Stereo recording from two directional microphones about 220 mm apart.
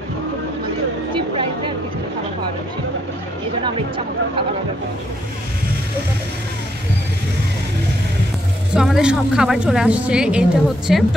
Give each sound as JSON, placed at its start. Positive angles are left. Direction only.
{"t": 3.6, "sound": "speech", "side_deg": -20}
{"t": 8.7, "sound": "a woman's voice", "side_deg": 0}